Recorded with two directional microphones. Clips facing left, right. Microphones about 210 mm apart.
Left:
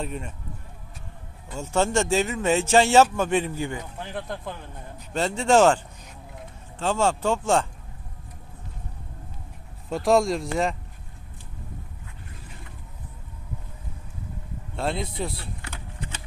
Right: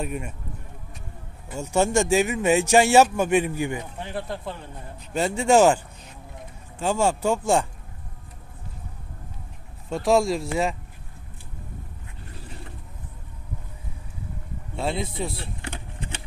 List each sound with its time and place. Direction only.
0.0 s a man's voice: 10° right (ahead or behind)
1.5 s a man's voice: 15° right (ahead or behind)
4.0 s a man's voice: centre (ahead or behind)
6.8 s a man's voice: 10° right (ahead or behind)
9.8 s speech: centre (ahead or behind)
14.8 s speech: centre (ahead or behind)
15.3 s power windows: 25° right (ahead or behind)